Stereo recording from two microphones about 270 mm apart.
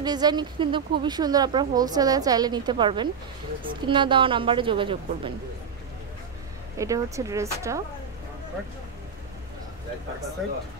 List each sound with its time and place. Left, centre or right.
0.0 s a woman's voice: centre
6.8 s speech: centre
10.4 s speech: centre